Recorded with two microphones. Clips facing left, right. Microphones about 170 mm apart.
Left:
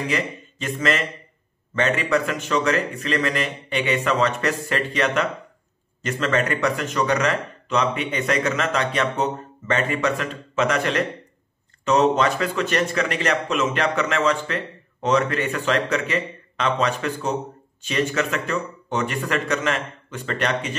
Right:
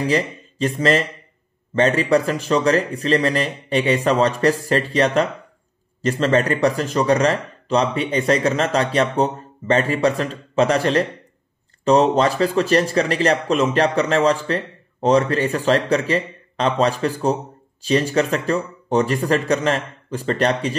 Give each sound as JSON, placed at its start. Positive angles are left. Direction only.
{"t": 0.0, "sound": "a man's voice", "side_deg": -35}